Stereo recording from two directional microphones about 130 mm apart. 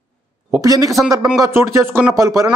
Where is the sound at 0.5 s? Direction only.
25° right (ahead or behind).